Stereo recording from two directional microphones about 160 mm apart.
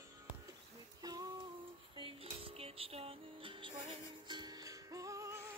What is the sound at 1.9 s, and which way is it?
Music, 35° right (ahead or behind).